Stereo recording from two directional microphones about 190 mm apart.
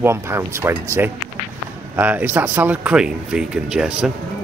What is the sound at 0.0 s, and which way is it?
Speech, 15° right (ahead or behind).